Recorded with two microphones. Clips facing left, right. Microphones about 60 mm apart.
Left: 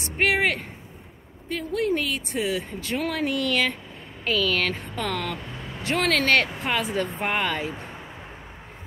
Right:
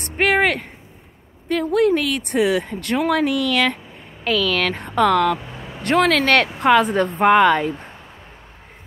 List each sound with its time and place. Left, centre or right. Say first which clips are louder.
0.0 s speech: right 5 dB; right
5.4 s vehicle: right 2 dB; centre
5.8 s speech: right 7 dB; right